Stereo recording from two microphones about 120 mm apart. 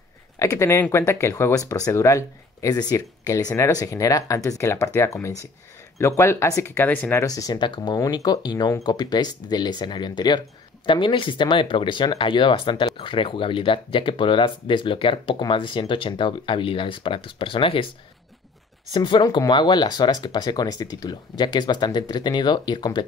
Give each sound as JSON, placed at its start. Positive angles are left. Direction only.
{"t": 0.4, "sound": "speech", "side_deg": 25}
{"t": 7.2, "sound": "speech", "side_deg": 30}
{"t": 18.9, "sound": "speech", "side_deg": 40}